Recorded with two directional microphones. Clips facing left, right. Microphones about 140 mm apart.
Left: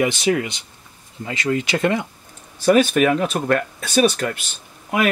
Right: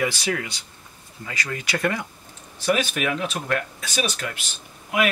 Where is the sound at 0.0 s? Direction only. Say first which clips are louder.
Left 6 dB; 20° left (ahead or behind).